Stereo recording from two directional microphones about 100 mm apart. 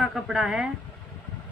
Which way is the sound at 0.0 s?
5° right (ahead or behind).